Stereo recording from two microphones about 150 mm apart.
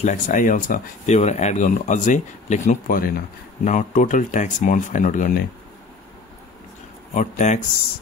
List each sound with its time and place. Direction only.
0.0 s speech: 55° left (ahead or behind)
1.1 s speech: 50° left (ahead or behind); by 3.2 s 75° left (ahead or behind)
3.6 s speech: 60° left (ahead or behind); by 5.5 s 75° left (ahead or behind)
7.2 s speech: 55° left (ahead or behind)